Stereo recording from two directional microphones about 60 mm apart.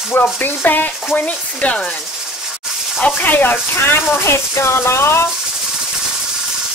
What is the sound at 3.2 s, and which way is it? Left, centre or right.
Speech, left.